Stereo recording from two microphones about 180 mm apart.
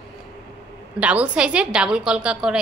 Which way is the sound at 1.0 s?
10° right (ahead or behind).